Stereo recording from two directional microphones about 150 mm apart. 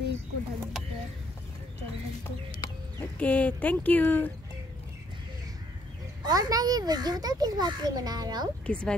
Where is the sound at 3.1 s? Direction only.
10° left (ahead or behind).